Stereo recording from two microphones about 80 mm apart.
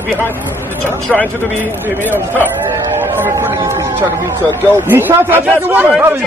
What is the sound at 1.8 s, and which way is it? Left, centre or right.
A man's voice, right.